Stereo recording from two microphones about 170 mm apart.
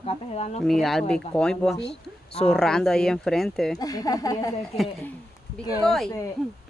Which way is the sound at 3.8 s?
20° left (ahead or behind).